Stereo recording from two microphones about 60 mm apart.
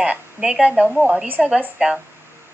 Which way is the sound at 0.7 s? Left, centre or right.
Right.